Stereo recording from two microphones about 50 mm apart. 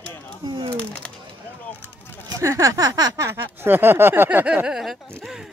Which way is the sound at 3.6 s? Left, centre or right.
Right.